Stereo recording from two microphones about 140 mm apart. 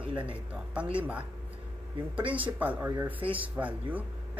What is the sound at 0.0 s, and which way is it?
Speech, 10° right (ahead or behind).